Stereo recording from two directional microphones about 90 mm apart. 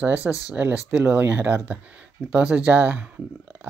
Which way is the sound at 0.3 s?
25° right (ahead or behind).